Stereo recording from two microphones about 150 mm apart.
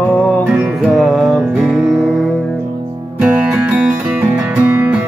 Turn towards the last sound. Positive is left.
turn(degrees=-10)  # may be behind; listen again after turning